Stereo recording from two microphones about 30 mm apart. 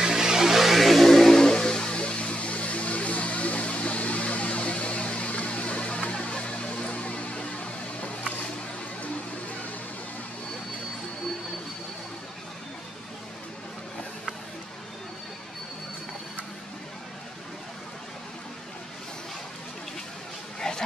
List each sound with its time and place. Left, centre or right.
0.0 s music: centre
1.0 s a sound: centre
1.4 s music: left
1.9 s music: left
8.0 s a sound: left
20.6 s pig: left